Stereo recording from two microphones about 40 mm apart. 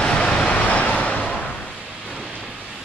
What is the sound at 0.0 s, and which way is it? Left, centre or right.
Vehicle, left.